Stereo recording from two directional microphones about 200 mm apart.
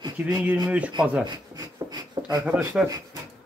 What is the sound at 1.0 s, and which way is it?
Speech, 5° right (ahead or behind).